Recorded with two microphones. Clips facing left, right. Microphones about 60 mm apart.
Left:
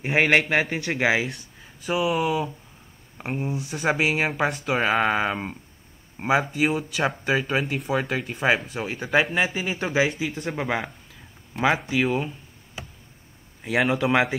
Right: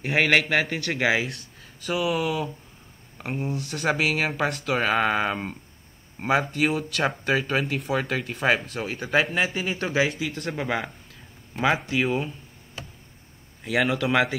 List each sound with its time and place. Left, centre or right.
0.0 s speech: centre
2.0 s speech: centre
4.3 s speech: centre
12.0 s speech: centre
13.6 s speech: centre